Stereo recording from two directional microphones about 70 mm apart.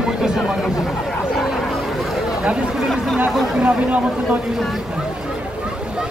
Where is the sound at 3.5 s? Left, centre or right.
Centre.